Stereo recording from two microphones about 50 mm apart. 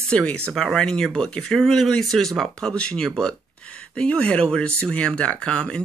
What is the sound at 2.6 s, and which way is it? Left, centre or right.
Speech, centre.